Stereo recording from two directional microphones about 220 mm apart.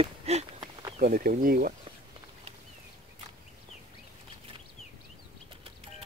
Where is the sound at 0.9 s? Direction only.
40° right (ahead or behind).